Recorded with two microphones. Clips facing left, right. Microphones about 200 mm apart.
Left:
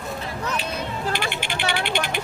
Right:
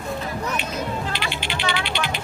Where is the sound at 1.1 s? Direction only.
50° left (ahead or behind).